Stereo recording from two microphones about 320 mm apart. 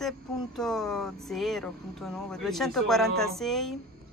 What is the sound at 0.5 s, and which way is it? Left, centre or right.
Speech, centre.